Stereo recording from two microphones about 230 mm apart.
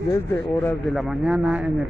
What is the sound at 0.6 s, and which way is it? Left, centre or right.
Speech, centre.